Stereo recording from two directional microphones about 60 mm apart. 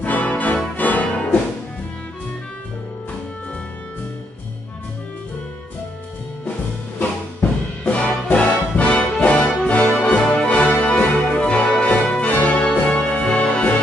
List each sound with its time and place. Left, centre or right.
0.0 s music: left
7.0 s music: left